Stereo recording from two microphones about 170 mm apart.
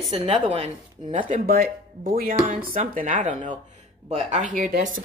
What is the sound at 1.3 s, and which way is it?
Speech, 60° right (ahead or behind).